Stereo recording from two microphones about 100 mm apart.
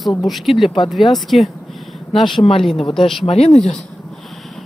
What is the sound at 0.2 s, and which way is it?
Speech, centre (ahead or behind).